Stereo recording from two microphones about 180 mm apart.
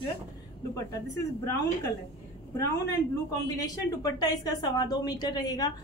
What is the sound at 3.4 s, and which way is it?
A woman's voice, 20° left (ahead or behind).